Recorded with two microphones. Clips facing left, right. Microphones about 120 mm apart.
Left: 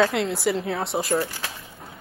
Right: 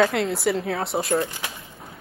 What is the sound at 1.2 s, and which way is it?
Speech, 20° right (ahead or behind).